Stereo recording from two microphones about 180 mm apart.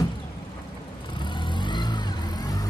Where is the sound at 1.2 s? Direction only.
25° left (ahead or behind).